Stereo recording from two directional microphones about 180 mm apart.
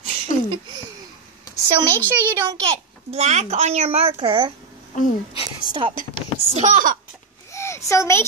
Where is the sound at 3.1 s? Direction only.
40° right (ahead or behind).